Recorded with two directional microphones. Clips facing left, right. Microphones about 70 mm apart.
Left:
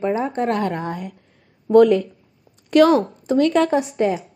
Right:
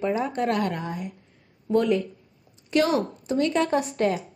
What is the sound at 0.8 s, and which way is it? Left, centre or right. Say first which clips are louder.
Speech: left 5 dB; left.